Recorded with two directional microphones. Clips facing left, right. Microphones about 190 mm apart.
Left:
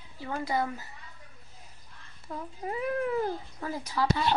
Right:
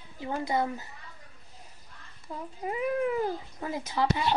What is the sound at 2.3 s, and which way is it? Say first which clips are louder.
Speech: left 1 dB; 10° right (ahead or behind).